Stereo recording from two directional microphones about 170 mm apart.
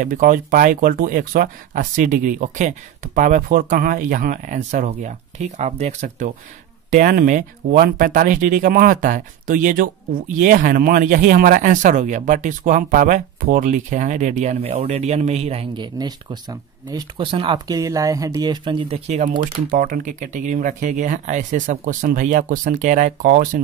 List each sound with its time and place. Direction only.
0.0 s speech: 50° right (ahead or behind)